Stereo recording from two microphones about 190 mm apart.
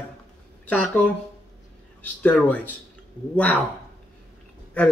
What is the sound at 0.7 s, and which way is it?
A man's voice, 10° left (ahead or behind).